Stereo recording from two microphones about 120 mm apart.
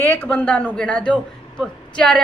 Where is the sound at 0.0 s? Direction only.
15° left (ahead or behind).